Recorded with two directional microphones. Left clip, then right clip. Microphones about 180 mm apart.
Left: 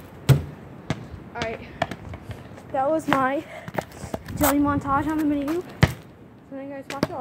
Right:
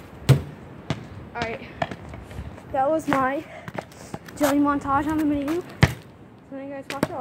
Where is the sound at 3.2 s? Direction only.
30° left (ahead or behind).